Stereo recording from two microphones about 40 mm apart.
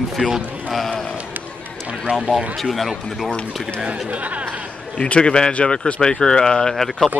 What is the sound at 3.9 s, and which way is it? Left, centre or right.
Speech, right.